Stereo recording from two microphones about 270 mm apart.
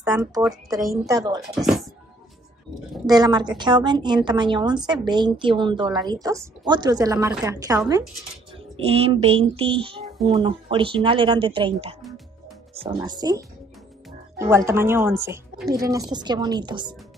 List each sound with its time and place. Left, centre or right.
0.0 s speech: centre
1.0 s a woman's voice: centre
1.5 s speech: centre
3.1 s a woman's voice: centre
14.4 s a woman's voice: centre